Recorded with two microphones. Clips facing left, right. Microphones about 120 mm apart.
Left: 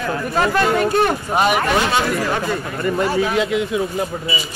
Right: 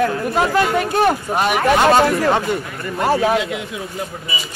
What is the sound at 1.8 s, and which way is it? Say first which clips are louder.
Speech: right 6 dB; 55° right (ahead or behind).